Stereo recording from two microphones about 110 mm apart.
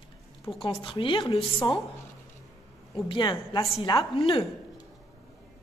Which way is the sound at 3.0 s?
50° left (ahead or behind).